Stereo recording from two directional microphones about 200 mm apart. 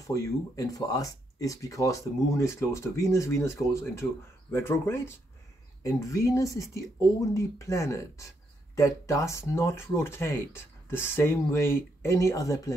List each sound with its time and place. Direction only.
0.0 s speech: 15° left (ahead or behind)